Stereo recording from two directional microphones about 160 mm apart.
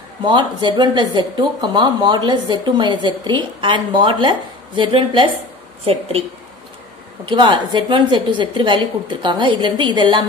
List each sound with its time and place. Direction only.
0.2 s a woman's voice: 30° right (ahead or behind)
7.2 s speech: 30° right (ahead or behind)